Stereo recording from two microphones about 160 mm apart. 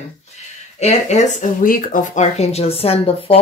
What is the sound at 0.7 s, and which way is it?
Speech, 45° left (ahead or behind).